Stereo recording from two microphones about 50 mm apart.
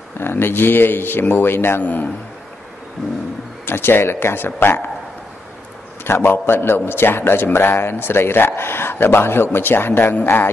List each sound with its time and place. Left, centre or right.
0.2 s a man's voice: left
3.6 s a man's voice: left
6.2 s a man's voice: left